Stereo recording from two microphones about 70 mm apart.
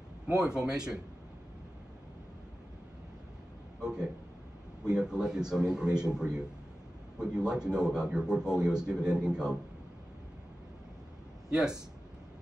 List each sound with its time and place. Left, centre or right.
0.3 s a man's voice: centre
3.8 s a man's voice: centre